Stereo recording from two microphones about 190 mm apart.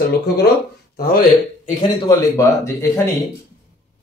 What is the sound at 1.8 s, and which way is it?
A man's voice, 20° left (ahead or behind).